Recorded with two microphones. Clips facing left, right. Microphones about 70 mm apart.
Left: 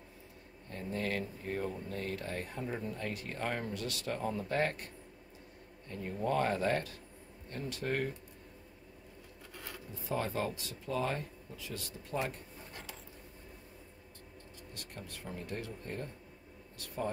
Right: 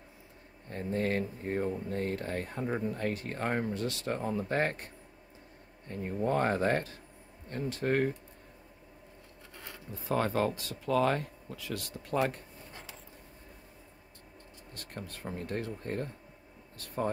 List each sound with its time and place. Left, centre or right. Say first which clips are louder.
0.7 s speech: right 5 dB; right
10.0 s speech: right 6 dB; right
14.7 s speech: right 5 dB; right